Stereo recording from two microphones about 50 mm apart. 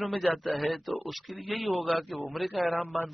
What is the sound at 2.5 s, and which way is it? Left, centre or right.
Speech, centre.